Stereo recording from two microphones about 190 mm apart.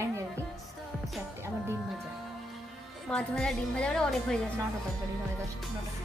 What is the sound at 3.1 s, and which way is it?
A woman's voice, 5° left (ahead or behind).